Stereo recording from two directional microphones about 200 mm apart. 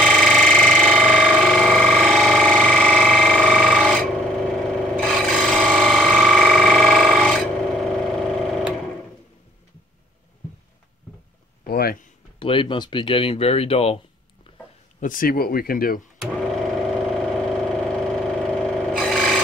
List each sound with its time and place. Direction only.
0.0 s a sound: centre (ahead or behind)
4.6 s rub: centre (ahead or behind)
11.6 s a sound: 50° left (ahead or behind)
12.4 s speech: 25° left (ahead or behind)
15.0 s speech: 45° left (ahead or behind)
17.0 s vehicle: centre (ahead or behind)